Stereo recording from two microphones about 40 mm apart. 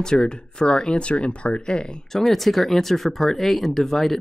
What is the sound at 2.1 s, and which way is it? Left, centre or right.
Speech, centre.